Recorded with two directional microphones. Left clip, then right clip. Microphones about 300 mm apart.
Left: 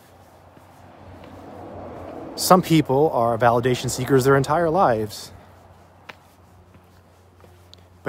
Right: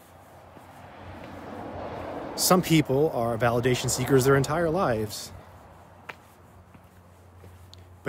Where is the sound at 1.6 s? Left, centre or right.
Right.